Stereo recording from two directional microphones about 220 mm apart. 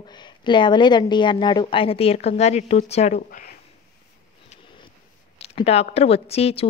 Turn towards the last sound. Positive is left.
turn(degrees=25)  # may be behind; listen again after turning